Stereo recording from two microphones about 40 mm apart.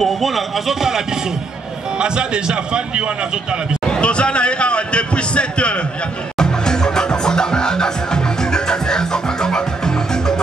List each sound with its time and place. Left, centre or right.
0.0 s a man's voice: centre
2.0 s a man's voice: right
3.8 s a man's voice: left
6.3 s music: centre